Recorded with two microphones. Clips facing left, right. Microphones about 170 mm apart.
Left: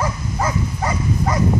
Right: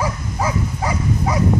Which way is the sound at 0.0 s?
5° right (ahead or behind).